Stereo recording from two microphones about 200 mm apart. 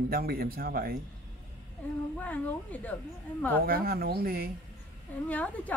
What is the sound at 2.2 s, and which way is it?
Speech, 5° left (ahead or behind).